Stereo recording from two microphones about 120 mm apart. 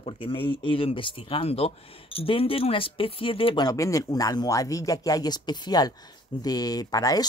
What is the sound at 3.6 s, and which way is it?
A woman's voice, 25° left (ahead or behind).